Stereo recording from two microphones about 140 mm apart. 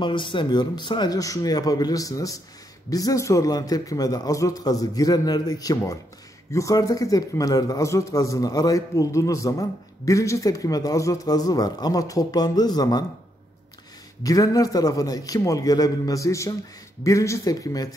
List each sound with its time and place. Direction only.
0.0 s a man's voice: 35° left (ahead or behind)
14.2 s a man's voice: 25° left (ahead or behind)